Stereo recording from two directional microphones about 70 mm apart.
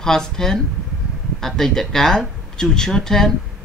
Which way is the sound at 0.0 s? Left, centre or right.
Centre.